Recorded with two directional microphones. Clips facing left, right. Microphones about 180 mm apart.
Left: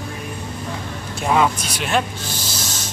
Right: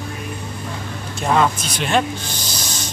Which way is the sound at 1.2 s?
5° left (ahead or behind).